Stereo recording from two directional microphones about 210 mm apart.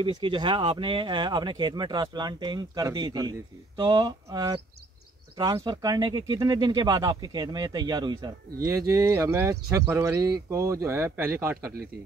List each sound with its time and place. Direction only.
0.0 s speech: 25° right (ahead or behind)